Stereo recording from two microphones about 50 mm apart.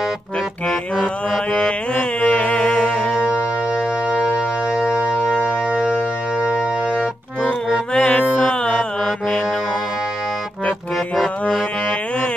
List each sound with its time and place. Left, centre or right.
1.6 s music: left
3.1 s music: centre
7.9 s music: centre